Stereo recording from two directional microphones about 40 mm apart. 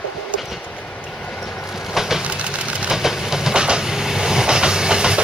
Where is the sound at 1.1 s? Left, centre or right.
Centre.